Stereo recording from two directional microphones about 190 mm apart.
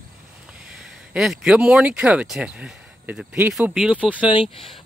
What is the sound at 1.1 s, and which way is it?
Speech, 5° right (ahead or behind).